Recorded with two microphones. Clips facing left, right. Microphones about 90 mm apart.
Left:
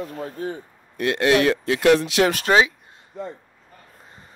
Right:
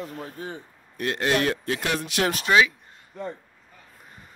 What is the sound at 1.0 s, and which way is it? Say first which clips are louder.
Speech: left 5 dB; 75° left (ahead or behind).